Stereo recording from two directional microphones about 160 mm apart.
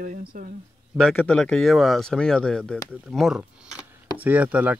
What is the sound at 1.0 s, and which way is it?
Speech, 5° left (ahead or behind).